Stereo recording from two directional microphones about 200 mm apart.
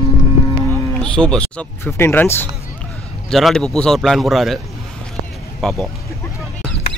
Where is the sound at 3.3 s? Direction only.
Centre (ahead or behind).